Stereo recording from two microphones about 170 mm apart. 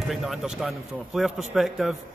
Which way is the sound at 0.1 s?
Centre (ahead or behind).